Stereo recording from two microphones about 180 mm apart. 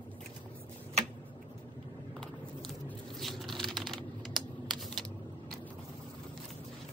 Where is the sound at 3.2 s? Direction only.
Centre (ahead or behind).